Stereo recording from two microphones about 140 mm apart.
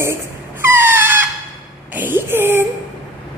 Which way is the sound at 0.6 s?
15° right (ahead or behind).